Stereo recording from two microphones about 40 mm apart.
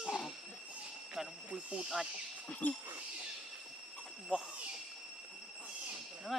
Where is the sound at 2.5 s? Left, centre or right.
Left.